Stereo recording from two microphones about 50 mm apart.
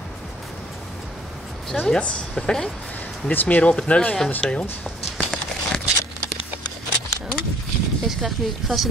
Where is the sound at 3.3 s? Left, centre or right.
Left.